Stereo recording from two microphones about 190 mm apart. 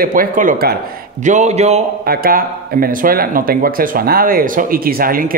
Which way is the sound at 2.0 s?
50° right (ahead or behind).